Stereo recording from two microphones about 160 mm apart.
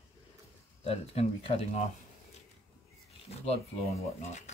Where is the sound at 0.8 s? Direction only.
35° left (ahead or behind).